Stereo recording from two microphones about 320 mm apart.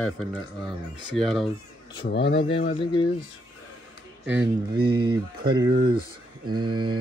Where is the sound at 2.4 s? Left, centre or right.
Centre.